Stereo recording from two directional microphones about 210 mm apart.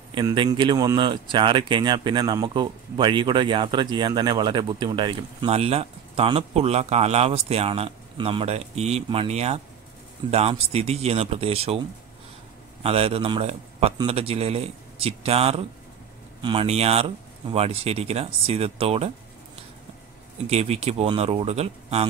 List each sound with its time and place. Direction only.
0.1 s speech: 20° right (ahead or behind)
12.8 s speech: 30° right (ahead or behind)
20.4 s speech: 30° right (ahead or behind)